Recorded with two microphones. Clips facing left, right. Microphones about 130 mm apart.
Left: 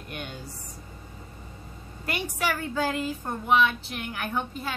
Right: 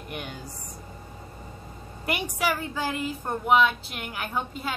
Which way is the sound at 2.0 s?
10° right (ahead or behind).